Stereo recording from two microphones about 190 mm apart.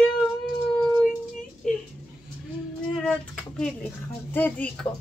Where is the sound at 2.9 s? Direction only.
5° left (ahead or behind).